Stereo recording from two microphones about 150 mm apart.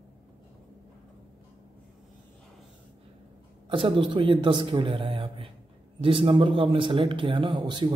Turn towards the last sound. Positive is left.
turn(degrees=-30)  # may be behind; listen again after turning